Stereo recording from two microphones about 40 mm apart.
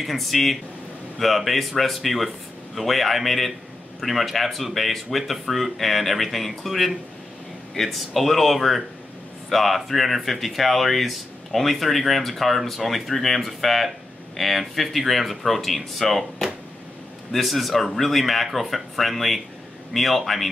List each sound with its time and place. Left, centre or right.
0.0 s speech: centre